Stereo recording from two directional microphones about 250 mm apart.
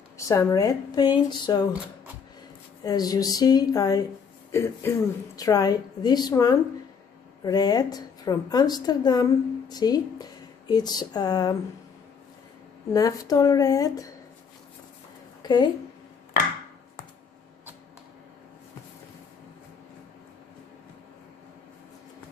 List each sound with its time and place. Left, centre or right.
0.2 s a woman's voice: centre
2.8 s a woman's voice: centre
12.9 s a woman's voice: centre
15.4 s a woman's voice: centre